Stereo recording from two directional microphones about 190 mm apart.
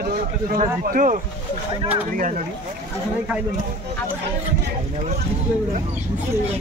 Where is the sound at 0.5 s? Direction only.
45° right (ahead or behind).